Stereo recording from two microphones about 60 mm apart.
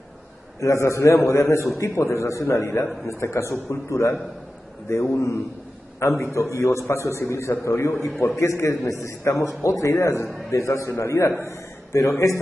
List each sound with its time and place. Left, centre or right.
0.6 s a man's voice: left
3.5 s a man's voice: left
10.5 s a man's voice: left